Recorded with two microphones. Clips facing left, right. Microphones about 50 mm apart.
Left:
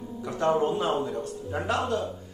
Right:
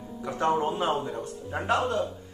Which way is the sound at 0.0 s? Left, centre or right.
Centre.